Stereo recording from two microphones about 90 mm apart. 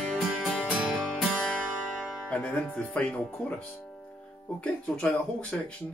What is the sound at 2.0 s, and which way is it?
Music, 15° left (ahead or behind).